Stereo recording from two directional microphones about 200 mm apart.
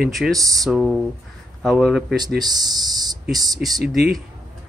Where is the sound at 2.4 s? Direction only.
20° right (ahead or behind).